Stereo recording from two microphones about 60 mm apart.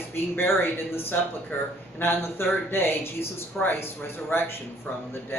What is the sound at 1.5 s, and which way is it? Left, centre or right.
Speech, left.